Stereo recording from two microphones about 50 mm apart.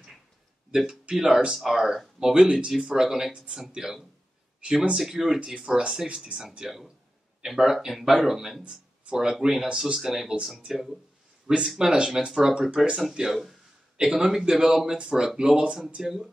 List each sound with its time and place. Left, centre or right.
0.7 s speech: centre
8.6 s speech: centre